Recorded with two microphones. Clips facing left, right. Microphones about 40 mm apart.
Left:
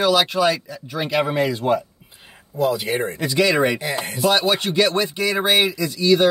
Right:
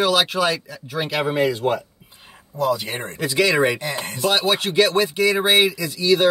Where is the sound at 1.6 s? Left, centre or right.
Centre.